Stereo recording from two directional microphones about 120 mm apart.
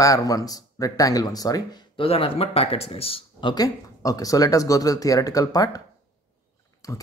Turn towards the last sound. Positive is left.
turn(degrees=25)  # may be behind; listen again after turning